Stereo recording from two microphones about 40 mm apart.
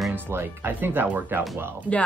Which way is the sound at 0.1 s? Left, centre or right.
Right.